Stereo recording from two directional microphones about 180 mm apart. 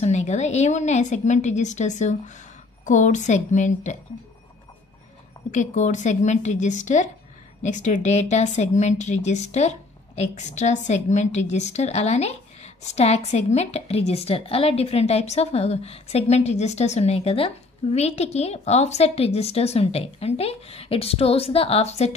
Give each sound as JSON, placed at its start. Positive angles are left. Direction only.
{"t": 0.0, "sound": "a woman's voice", "side_deg": 40}
{"t": 5.5, "sound": "a woman's voice", "side_deg": 45}